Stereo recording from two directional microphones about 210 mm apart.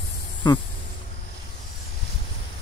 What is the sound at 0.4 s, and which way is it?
Speech, 20° left (ahead or behind).